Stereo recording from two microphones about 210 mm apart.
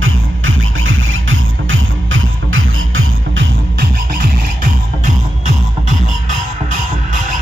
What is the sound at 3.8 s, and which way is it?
Music, 45° right (ahead or behind).